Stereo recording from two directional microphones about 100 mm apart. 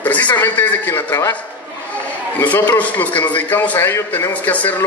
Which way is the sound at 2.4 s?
15° left (ahead or behind).